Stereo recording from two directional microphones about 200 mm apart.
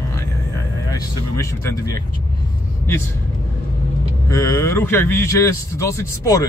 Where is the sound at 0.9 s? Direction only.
15° left (ahead or behind).